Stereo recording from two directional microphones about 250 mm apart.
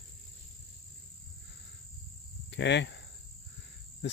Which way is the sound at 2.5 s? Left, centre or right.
Left.